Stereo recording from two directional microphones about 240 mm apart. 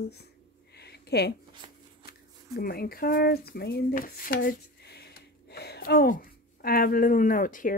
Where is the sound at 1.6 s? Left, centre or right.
Right.